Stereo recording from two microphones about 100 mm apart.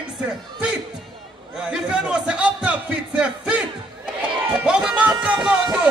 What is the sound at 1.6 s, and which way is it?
A man's voice, 10° right (ahead or behind).